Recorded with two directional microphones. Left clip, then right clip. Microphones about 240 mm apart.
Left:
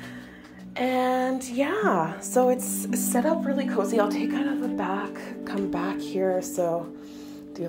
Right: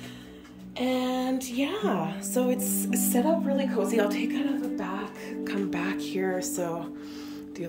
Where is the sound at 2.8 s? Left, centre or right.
Centre.